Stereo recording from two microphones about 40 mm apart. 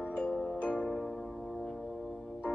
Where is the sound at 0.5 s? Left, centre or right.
Left.